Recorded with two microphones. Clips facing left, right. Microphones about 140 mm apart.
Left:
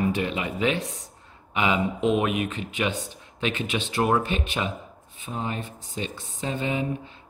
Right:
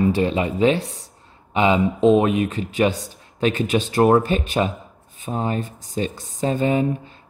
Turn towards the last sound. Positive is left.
turn(degrees=-40)  # may be behind; listen again after turning